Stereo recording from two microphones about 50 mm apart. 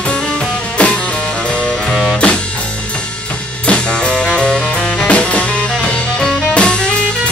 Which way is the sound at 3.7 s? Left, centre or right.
Left.